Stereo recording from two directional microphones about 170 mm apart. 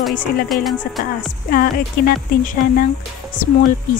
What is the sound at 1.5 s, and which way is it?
Speech, 55° left (ahead or behind).